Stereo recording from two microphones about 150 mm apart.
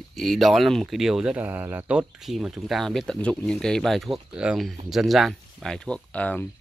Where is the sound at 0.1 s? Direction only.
Centre (ahead or behind).